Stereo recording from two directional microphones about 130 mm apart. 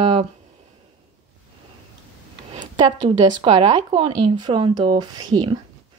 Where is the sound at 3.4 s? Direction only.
40° right (ahead or behind).